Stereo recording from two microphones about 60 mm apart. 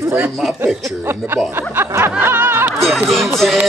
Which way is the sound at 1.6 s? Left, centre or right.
Right.